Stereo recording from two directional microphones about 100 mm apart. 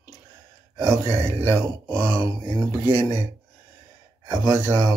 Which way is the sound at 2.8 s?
25° right (ahead or behind).